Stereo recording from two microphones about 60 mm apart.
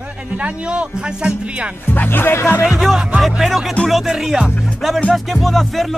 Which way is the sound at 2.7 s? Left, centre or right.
Centre.